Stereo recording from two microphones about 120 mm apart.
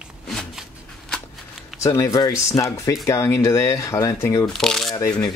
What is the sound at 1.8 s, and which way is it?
Speech, 30° left (ahead or behind).